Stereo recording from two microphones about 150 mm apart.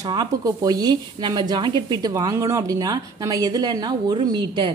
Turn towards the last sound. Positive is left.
turn(degrees=-30)  # may be behind; listen again after turning